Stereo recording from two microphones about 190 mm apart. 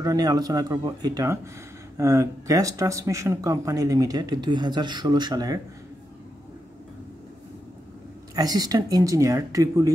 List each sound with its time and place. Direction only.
0.0 s speech: 20° right (ahead or behind)
8.4 s speech: 20° right (ahead or behind)